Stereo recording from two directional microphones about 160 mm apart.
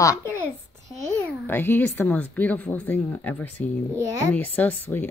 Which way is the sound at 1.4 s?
15° left (ahead or behind).